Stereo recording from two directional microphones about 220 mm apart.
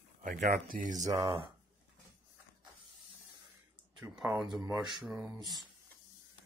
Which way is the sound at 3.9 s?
5° right (ahead or behind).